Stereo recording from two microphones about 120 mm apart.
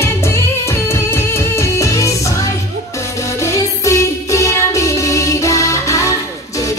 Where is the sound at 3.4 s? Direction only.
25° left (ahead or behind).